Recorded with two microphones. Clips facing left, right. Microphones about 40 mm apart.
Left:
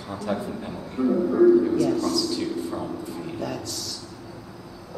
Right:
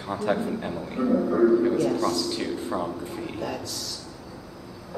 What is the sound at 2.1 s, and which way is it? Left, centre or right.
Speech, right.